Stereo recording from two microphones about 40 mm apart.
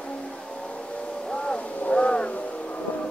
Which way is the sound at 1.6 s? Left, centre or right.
Left.